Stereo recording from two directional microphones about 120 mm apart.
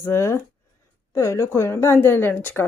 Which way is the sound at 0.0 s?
25° left (ahead or behind).